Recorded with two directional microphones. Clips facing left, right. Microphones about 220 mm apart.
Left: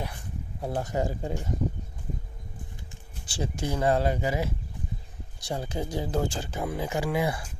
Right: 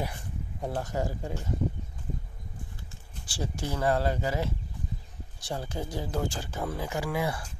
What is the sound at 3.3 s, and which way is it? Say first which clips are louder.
Speech: left 3 dB; 20° left (ahead or behind).